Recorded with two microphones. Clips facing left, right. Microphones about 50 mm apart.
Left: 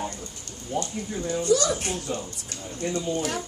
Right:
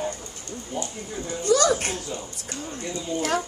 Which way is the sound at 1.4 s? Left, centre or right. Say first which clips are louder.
Right 4 dB; right.